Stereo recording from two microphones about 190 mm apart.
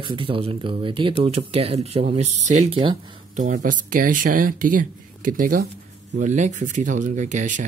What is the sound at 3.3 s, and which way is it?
Speech, 45° right (ahead or behind).